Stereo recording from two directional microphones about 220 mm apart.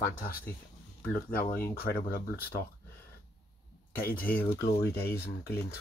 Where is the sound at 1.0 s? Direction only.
45° left (ahead or behind).